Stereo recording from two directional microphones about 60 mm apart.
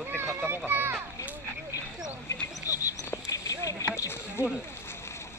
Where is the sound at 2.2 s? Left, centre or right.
Left.